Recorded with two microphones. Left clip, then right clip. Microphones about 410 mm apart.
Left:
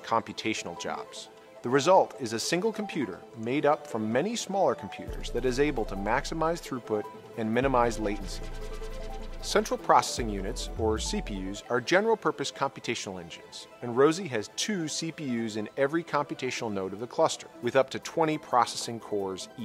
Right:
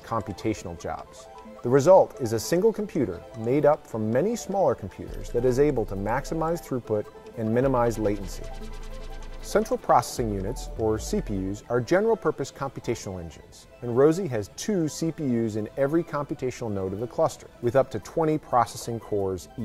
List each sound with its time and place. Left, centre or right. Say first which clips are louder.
0.1 s speech: even; right
1.6 s speech: right 5 dB; right
9.5 s speech: right 2 dB; right
10.8 s speech: right 3 dB; right